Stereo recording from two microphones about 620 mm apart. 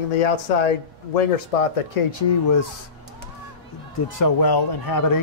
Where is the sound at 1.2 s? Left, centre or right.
Left.